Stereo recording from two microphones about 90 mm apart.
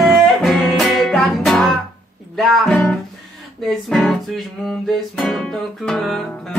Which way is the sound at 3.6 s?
Centre (ahead or behind).